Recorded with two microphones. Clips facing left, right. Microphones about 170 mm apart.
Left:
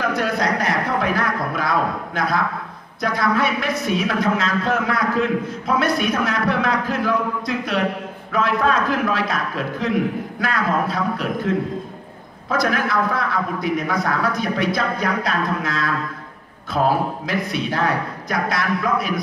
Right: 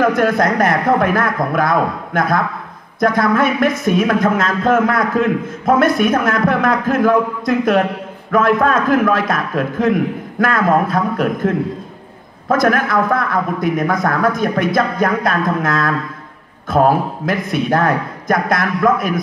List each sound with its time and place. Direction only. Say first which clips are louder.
0.0 s speech: right 7 dB; 50° right (ahead or behind)